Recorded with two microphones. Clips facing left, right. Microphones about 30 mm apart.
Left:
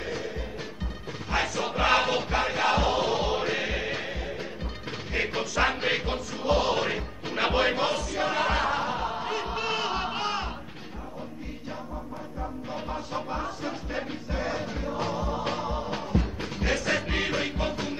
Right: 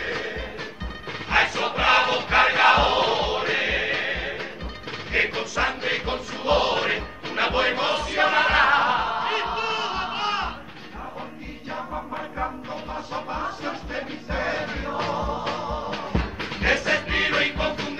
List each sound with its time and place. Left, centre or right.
0.0 s music: right
1.3 s music: right
2.2 s crowd: right
3.3 s music: right
5.3 s music: centre
6.4 s music: right
7.9 s music: right
9.6 s music: centre
12.9 s music: centre
15.3 s music: centre
16.2 s music: right
16.8 s music: centre
17.3 s music: right